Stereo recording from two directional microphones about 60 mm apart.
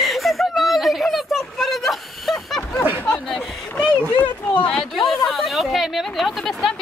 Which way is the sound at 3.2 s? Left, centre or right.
Centre.